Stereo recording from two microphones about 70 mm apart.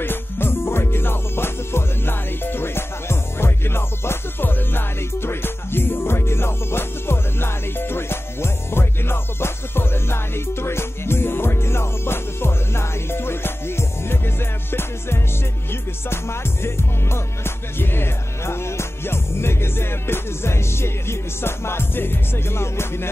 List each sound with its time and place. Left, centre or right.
0.0 s music: left